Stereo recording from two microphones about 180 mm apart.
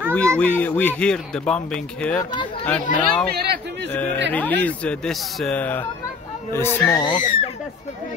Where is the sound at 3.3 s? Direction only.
65° right (ahead or behind).